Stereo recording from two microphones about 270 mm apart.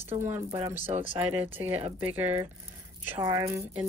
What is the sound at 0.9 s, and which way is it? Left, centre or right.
Speech, centre.